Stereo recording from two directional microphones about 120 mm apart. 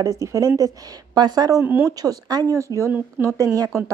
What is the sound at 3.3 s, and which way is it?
Speech, 30° right (ahead or behind).